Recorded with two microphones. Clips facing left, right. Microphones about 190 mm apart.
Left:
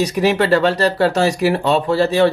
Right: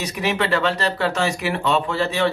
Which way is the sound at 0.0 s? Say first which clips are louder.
Left 7 dB; 40° left (ahead or behind).